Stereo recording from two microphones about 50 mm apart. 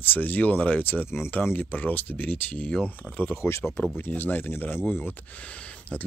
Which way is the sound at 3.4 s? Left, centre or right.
Left.